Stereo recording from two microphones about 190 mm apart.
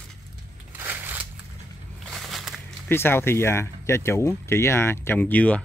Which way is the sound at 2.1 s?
Centre (ahead or behind).